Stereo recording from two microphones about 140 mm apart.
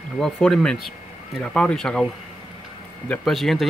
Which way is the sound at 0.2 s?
5° left (ahead or behind).